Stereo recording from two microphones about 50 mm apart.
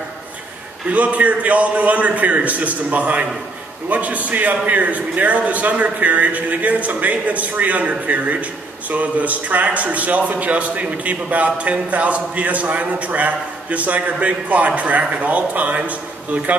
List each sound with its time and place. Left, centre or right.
0.8 s a man's voice: right